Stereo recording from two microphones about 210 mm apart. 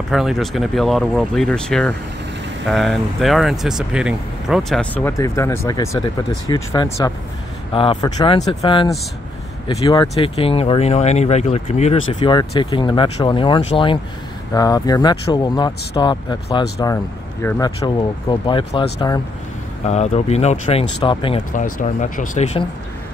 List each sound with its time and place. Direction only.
0.1 s speech: centre (ahead or behind); by 16.6 s 20° left (ahead or behind)
16.8 s speech: 10° left (ahead or behind)
19.9 s speech: 30° left (ahead or behind)
21.5 s speech: 40° left (ahead or behind)